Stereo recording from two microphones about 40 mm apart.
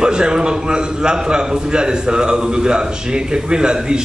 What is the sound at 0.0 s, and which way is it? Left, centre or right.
A man's voice, right.